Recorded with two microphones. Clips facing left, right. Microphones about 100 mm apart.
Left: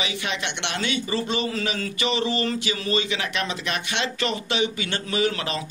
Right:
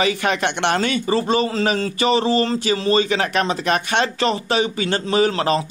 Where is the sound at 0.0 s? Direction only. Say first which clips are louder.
Right 9 dB; 45° right (ahead or behind).